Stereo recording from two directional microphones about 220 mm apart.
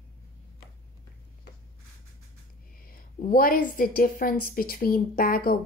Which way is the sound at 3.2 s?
40° left (ahead or behind).